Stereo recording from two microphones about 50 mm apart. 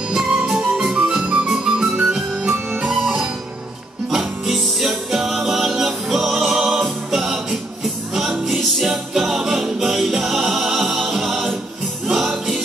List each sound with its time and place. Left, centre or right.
0.1 s music: centre
4.1 s music: centre
8.5 s music: centre
8.9 s music: centre